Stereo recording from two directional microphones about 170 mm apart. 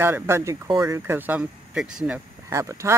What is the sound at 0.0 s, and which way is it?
Speech, 15° right (ahead or behind).